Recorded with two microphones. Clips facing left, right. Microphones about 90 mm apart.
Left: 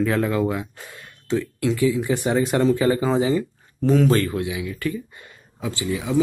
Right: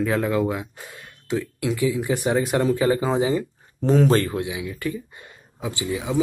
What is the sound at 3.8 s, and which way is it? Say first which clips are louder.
Speech: even; 35° right (ahead or behind).